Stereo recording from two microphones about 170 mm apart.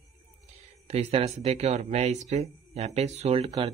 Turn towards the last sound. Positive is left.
turn(degrees=-35)  # may be behind; listen again after turning